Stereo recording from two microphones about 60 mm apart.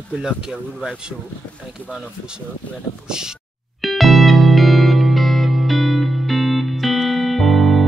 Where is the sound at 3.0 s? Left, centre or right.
Centre.